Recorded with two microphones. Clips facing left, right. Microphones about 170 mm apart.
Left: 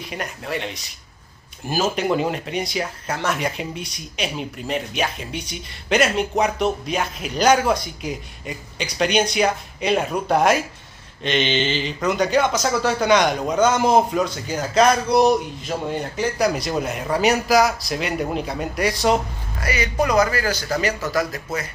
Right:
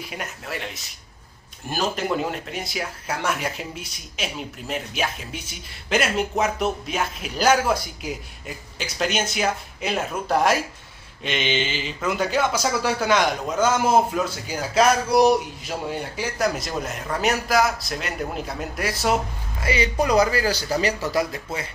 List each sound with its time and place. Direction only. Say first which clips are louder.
0.1 s speech: left 7 dB; centre (ahead or behind)
1.7 s speech: left 4 dB; centre (ahead or behind)
19.6 s speech: even; 25° right (ahead or behind)